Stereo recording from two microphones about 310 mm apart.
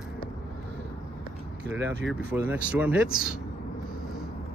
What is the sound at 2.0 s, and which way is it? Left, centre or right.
Speech, centre.